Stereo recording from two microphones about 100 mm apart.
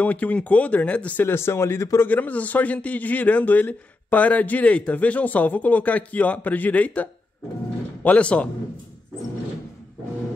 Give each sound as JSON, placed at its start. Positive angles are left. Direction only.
{"t": 0.0, "sound": "speech", "side_deg": 15}